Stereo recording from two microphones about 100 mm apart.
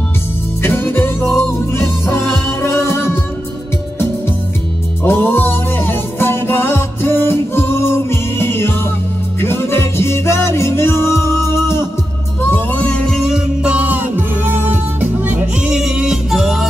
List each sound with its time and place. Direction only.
0.6 s music: 25° left (ahead or behind)
5.0 s music: 20° left (ahead or behind)
13.1 s music: 5° right (ahead or behind)